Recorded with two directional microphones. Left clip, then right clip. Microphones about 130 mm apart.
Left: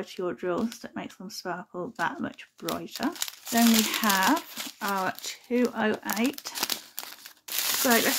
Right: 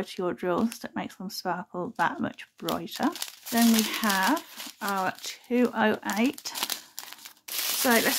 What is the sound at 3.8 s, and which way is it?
Speech, centre (ahead or behind).